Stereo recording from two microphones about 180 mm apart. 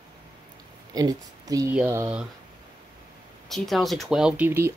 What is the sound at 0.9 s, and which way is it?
Speech, 20° right (ahead or behind).